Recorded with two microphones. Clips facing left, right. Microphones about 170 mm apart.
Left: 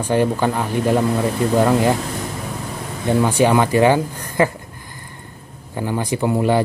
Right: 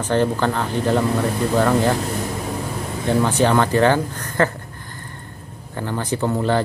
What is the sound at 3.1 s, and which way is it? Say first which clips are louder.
Speech: left 2 dB; 10° left (ahead or behind).